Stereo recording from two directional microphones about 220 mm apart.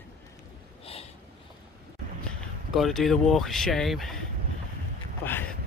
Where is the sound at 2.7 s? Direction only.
Centre (ahead or behind).